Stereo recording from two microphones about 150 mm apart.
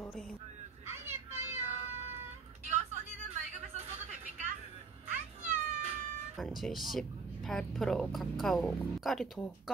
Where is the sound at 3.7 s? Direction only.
50° right (ahead or behind).